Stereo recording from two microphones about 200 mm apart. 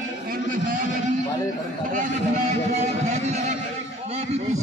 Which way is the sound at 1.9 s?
40° right (ahead or behind).